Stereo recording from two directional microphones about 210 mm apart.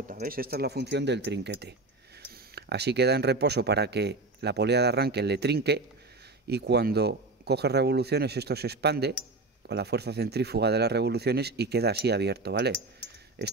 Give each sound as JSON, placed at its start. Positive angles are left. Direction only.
{"t": 0.1, "sound": "speech", "side_deg": -45}